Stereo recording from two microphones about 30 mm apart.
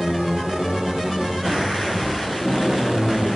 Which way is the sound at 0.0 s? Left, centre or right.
Centre.